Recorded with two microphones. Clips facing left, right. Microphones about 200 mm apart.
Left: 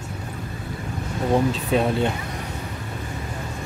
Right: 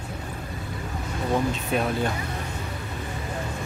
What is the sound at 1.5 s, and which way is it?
Speech, 30° left (ahead or behind).